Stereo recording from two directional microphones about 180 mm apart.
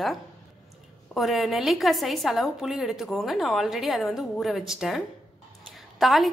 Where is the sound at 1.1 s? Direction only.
Centre (ahead or behind).